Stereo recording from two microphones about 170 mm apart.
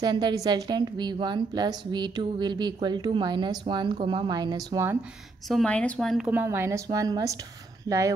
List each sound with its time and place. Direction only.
0.0 s a woman's voice: 25° right (ahead or behind)
5.5 s speech: 5° left (ahead or behind)
6.4 s a woman's voice: 15° right (ahead or behind)